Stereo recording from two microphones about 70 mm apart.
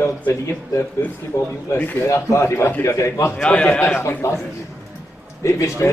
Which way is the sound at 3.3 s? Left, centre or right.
Centre.